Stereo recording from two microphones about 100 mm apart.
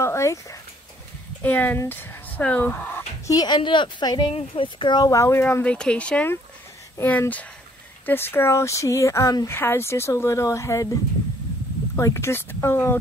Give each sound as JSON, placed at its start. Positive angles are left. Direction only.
{"t": 0.0, "sound": "speech", "side_deg": 30}
{"t": 1.4, "sound": "speech", "side_deg": 20}
{"t": 3.3, "sound": "a woman's voice", "side_deg": 45}
{"t": 4.3, "sound": "speech", "side_deg": 60}
{"t": 5.1, "sound": "speech", "side_deg": 30}
{"t": 5.4, "sound": "speech", "side_deg": 15}
{"t": 9.5, "sound": "speech", "side_deg": 25}
{"t": 11.9, "sound": "speech", "side_deg": 30}